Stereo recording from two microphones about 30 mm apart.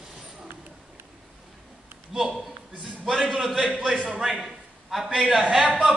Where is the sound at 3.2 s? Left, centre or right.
Right.